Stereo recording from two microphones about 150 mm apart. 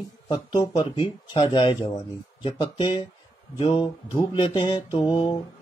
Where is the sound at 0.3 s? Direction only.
30° left (ahead or behind).